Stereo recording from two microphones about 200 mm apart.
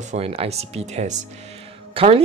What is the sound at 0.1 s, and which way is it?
Speech, 30° right (ahead or behind).